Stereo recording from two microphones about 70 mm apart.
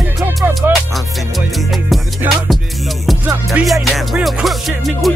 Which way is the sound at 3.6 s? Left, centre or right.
Centre.